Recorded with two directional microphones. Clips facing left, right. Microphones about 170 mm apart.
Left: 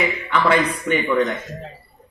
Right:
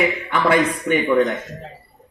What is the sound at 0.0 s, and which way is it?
Speech, 20° right (ahead or behind).